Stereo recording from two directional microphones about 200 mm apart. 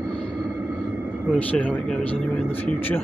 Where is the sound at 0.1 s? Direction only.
5° left (ahead or behind).